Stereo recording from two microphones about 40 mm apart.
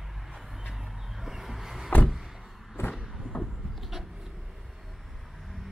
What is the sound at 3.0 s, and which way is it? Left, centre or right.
Vehicle, centre.